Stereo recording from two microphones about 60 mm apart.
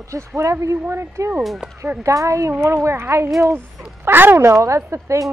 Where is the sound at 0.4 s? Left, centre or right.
Right.